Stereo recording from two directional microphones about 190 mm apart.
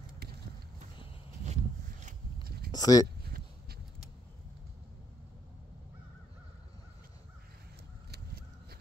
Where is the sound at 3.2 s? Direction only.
55° right (ahead or behind).